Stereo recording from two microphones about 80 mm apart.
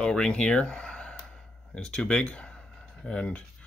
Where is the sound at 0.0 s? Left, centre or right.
Centre.